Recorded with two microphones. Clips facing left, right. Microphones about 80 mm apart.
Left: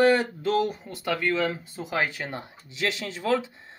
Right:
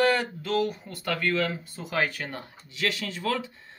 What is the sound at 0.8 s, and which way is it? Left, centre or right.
Speech, centre.